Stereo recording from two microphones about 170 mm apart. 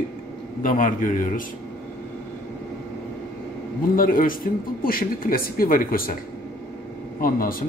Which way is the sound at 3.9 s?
55° left (ahead or behind).